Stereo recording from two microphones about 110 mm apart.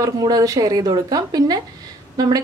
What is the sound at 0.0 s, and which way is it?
A woman's voice, 35° right (ahead or behind).